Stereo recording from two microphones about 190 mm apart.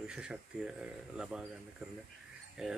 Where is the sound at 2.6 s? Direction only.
5° right (ahead or behind).